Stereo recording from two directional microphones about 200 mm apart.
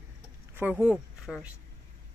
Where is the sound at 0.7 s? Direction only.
Centre (ahead or behind).